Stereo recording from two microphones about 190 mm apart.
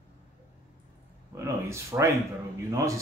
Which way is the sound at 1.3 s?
15° right (ahead or behind).